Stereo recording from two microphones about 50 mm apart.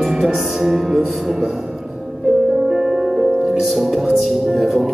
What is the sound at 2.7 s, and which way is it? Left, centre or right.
Music, centre.